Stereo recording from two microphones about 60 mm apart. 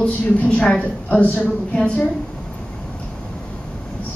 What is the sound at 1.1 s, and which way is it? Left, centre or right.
A woman's voice, left.